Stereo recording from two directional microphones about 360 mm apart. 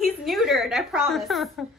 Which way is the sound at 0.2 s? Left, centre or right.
Centre.